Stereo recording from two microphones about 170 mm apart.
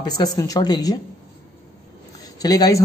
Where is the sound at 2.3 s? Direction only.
20° left (ahead or behind).